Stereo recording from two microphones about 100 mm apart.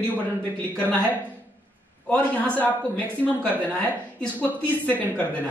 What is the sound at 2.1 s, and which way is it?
A man's voice, 10° left (ahead or behind).